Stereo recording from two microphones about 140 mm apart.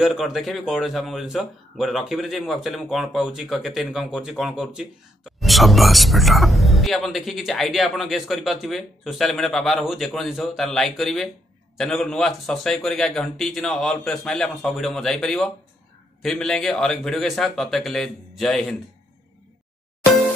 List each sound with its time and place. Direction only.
0.0 s speech: centre (ahead or behind)